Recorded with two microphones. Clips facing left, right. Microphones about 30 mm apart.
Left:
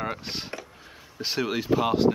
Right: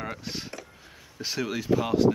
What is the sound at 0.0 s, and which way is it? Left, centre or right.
Speech, left.